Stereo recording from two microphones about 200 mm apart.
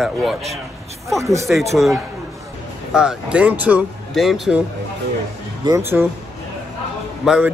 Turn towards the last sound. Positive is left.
turn(degrees=-5)  # may be behind; listen again after turning